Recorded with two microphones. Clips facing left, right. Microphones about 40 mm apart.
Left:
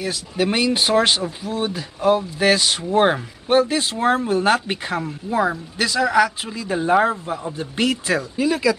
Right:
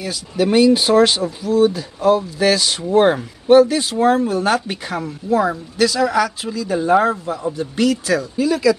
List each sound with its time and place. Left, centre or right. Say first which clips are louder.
0.4 s speech: right 6 dB; left